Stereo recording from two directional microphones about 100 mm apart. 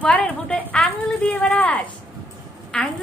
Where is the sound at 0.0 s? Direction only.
15° left (ahead or behind).